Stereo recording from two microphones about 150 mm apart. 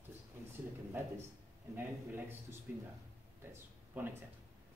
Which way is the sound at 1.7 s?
15° right (ahead or behind).